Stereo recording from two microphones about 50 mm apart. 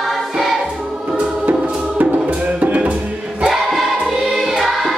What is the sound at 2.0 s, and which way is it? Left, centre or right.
Music, right.